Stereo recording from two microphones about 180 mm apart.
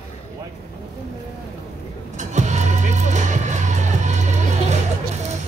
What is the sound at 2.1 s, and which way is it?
Music, 40° right (ahead or behind).